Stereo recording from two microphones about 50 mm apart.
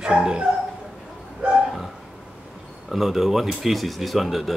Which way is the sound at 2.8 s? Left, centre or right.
Centre.